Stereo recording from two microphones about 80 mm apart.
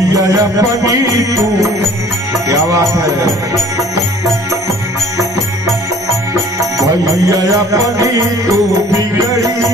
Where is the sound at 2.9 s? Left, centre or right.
Right.